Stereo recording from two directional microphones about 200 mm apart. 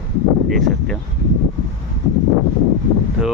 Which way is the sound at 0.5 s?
Centre (ahead or behind).